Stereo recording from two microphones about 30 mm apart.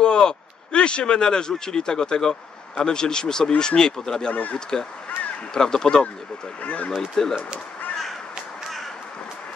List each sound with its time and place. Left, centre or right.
0.0 s speech: left
4.3 s speech: left
4.6 s speech: left
6.6 s speech: left
7.2 s speech: centre